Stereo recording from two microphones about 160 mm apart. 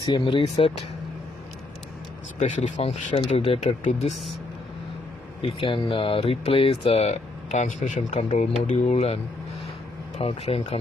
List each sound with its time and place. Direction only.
0.0 s speech: 30° left (ahead or behind)
2.3 s speech: 50° left (ahead or behind)
5.4 s speech: 35° left (ahead or behind)